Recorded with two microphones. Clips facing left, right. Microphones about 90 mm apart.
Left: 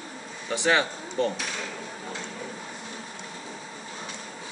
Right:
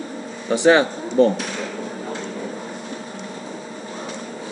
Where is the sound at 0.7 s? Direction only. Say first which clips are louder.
Right 7 dB; 20° right (ahead or behind).